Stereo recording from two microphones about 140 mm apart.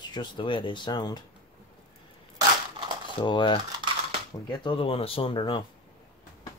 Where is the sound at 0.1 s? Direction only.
35° left (ahead or behind).